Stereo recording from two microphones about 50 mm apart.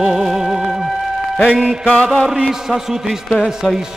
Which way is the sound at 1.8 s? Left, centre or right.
Left.